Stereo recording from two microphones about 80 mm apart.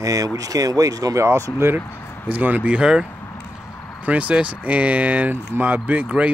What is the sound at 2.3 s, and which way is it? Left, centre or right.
Speech, right.